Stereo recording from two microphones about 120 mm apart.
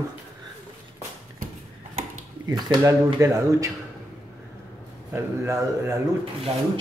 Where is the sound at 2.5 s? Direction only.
30° right (ahead or behind).